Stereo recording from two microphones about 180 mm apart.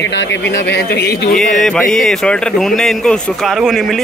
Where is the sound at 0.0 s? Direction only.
75° left (ahead or behind).